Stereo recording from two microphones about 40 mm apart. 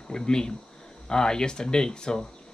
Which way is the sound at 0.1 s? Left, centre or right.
Centre.